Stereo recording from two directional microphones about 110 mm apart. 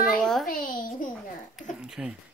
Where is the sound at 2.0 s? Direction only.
10° right (ahead or behind).